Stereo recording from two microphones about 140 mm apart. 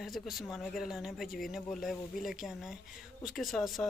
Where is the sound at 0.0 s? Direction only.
Centre (ahead or behind).